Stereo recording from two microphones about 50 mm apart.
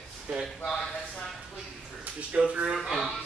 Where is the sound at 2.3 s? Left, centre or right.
Right.